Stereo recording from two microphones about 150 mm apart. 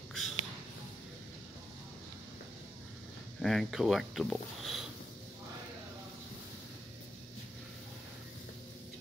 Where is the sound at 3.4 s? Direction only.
Centre (ahead or behind).